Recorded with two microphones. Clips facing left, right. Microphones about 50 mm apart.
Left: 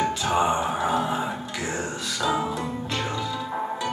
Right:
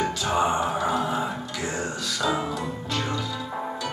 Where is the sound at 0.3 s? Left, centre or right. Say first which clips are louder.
Even; centre.